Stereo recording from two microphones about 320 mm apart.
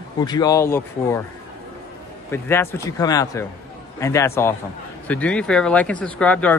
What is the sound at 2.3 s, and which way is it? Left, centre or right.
Speech, centre.